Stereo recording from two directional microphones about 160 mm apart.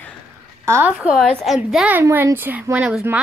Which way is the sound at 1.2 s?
Centre (ahead or behind).